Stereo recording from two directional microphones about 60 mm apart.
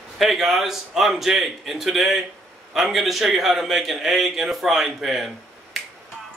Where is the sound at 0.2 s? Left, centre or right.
Centre.